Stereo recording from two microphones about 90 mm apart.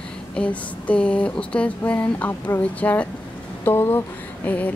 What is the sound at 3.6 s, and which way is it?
Speech, 25° left (ahead or behind).